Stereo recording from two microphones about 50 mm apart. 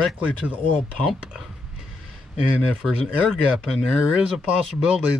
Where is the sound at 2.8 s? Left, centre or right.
Centre.